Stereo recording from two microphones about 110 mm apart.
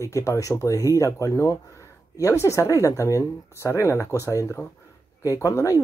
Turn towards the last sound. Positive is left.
turn(degrees=30)  # may be behind; listen again after turning